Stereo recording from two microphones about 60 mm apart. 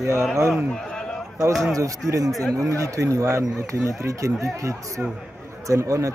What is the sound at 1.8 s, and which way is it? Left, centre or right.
Speech, right.